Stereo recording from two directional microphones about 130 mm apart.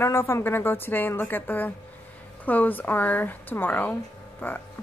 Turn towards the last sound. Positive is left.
turn(degrees=15)  # may be behind; listen again after turning